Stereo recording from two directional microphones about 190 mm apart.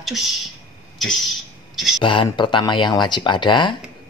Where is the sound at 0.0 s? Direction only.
Centre (ahead or behind).